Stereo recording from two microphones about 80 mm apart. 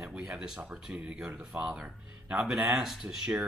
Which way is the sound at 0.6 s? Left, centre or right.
Centre.